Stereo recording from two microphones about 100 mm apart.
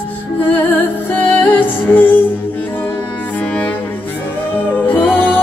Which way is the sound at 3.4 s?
15° left (ahead or behind).